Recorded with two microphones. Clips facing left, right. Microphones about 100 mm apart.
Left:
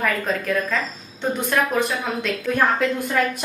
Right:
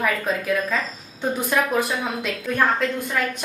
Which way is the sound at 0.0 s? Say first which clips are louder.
Even; 5° right (ahead or behind).